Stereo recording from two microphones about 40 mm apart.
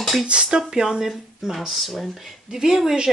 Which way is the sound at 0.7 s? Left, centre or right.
Centre.